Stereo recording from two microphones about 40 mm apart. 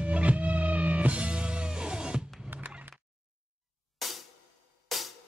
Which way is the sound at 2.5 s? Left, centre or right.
Right.